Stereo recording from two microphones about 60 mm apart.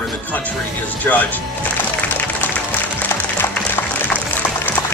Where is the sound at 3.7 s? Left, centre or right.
Left.